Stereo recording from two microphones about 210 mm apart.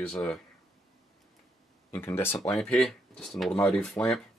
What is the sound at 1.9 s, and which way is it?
Speech, 10° left (ahead or behind).